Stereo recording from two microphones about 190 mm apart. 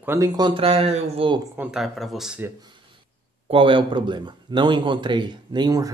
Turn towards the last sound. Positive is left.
turn(degrees=-20)  # may be behind; listen again after turning